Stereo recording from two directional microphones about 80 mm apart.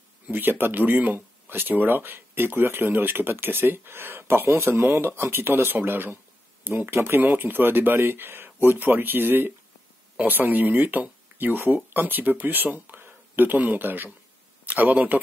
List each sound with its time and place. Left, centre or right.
0.3 s speech: right